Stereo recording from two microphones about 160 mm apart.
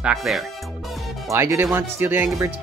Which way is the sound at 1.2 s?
15° right (ahead or behind).